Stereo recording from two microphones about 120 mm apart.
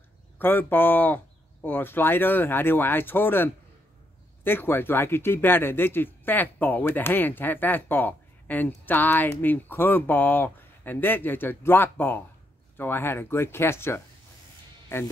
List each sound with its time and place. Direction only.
0.4 s speech: 15° left (ahead or behind)